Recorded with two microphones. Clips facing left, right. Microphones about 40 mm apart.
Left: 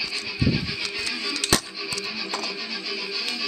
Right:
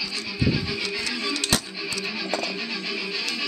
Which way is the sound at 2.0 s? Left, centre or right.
Right.